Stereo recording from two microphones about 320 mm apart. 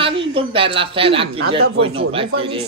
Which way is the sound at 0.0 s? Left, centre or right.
Centre.